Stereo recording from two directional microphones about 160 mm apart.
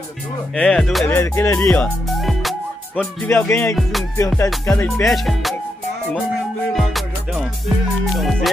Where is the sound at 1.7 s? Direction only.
Centre (ahead or behind).